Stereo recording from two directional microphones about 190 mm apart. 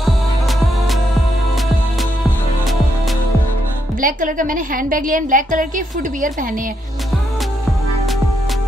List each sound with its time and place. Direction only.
4.0 s a woman's voice: 45° right (ahead or behind)